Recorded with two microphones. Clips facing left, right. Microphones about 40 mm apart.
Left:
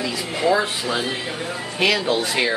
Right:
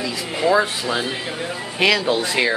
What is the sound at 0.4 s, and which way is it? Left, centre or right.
Speech, centre.